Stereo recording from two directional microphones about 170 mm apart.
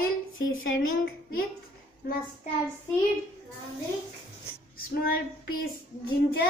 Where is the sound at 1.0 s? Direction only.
65° left (ahead or behind).